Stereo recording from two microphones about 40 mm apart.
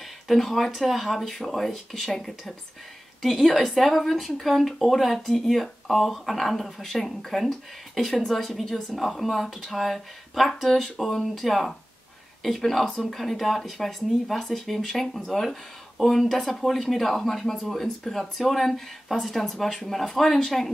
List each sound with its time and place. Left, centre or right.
0.3 s speech: centre
3.2 s a woman's voice: centre